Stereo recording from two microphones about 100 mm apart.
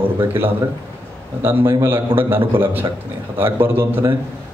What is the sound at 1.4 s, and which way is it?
Speech, 25° right (ahead or behind).